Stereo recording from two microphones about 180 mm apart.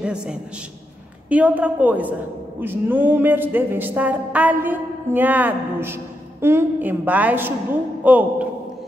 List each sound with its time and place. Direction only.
0.0 s a man's voice: 5° right (ahead or behind)
1.3 s music: 10° right (ahead or behind)